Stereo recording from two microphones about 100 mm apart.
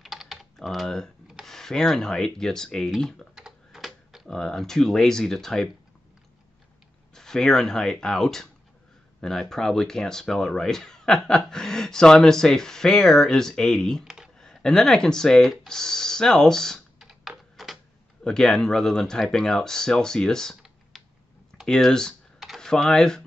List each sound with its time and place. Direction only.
0.0 s typing: centre (ahead or behind)
1.2 s speech: centre (ahead or behind)
7.2 s speech: 5° left (ahead or behind)
14.0 s a sound: 10° right (ahead or behind)
14.4 s speech: 5° left (ahead or behind)
15.5 s computer keyboard: 5° left (ahead or behind)
18.2 s speech: 5° left (ahead or behind)
20.9 s typing: centre (ahead or behind)
21.5 s speech: 5° left (ahead or behind)